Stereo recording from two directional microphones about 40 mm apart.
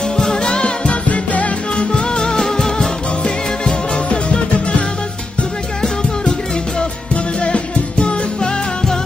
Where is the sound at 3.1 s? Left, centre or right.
Left.